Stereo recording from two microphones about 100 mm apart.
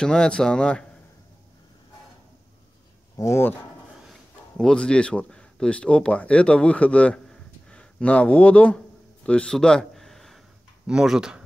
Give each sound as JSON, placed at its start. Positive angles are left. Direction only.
{"t": 0.0, "sound": "speech", "side_deg": 5}
{"t": 3.2, "sound": "speech", "side_deg": 25}
{"t": 4.1, "sound": "speech", "side_deg": 5}